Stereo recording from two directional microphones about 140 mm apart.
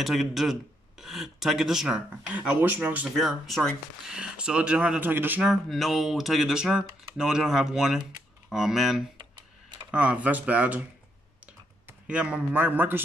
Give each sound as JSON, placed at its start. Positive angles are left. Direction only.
{"t": 0.0, "sound": "speech", "side_deg": 0}
{"t": 3.2, "sound": "speech", "side_deg": 0}
{"t": 5.5, "sound": "speech", "side_deg": 0}
{"t": 9.2, "sound": "tick-tock", "side_deg": -35}
{"t": 9.8, "sound": "speech", "side_deg": -10}
{"t": 12.1, "sound": "speech", "side_deg": -10}